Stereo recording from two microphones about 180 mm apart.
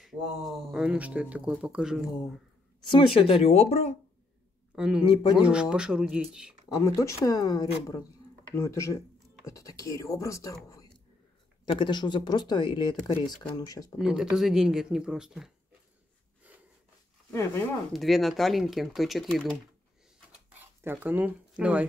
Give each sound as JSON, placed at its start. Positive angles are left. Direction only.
{"t": 0.0, "sound": "speech", "side_deg": 0}
{"t": 2.8, "sound": "speech", "side_deg": 25}
{"t": 4.7, "sound": "speech", "side_deg": -5}
{"t": 5.0, "sound": "speech", "side_deg": 25}
{"t": 5.4, "sound": "speech", "side_deg": -5}
{"t": 6.8, "sound": "speech", "side_deg": 15}
{"t": 13.9, "sound": "speech", "side_deg": -5}
{"t": 17.3, "sound": "speech", "side_deg": 15}
{"t": 17.9, "sound": "speech", "side_deg": 0}
{"t": 20.5, "sound": "speech", "side_deg": -10}